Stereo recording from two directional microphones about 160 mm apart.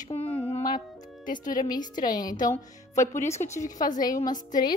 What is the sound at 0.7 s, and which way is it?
Music, 55° left (ahead or behind).